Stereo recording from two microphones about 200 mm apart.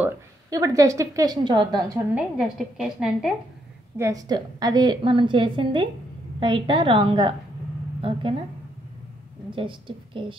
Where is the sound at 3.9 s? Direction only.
15° right (ahead or behind).